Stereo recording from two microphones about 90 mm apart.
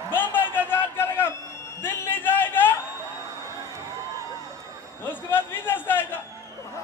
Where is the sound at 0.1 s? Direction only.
20° left (ahead or behind).